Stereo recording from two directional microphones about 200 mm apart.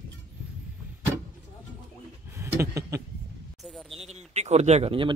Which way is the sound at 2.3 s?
15° right (ahead or behind).